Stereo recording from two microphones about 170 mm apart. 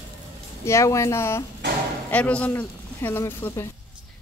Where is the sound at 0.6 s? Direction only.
15° left (ahead or behind).